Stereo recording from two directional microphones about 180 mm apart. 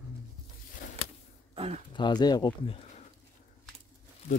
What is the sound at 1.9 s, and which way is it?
Speech, 25° left (ahead or behind).